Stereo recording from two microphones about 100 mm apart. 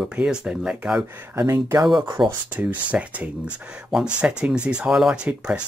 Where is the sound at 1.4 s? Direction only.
30° right (ahead or behind).